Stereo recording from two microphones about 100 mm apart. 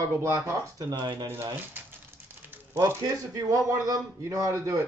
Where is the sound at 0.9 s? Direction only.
50° right (ahead or behind).